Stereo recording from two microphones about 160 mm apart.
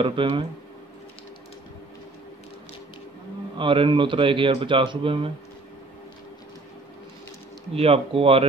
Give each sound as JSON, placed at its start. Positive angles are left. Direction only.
{"t": 0.0, "sound": "speech", "side_deg": -30}
{"t": 3.5, "sound": "speech", "side_deg": -30}
{"t": 7.7, "sound": "speech", "side_deg": -40}